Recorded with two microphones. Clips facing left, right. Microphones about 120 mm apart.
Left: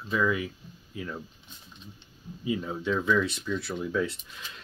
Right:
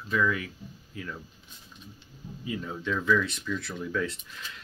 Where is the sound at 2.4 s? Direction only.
15° left (ahead or behind).